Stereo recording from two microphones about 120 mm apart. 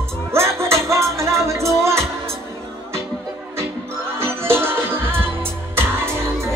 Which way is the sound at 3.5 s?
20° right (ahead or behind).